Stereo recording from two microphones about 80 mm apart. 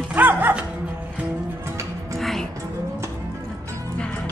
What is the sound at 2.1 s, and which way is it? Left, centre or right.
Music, centre.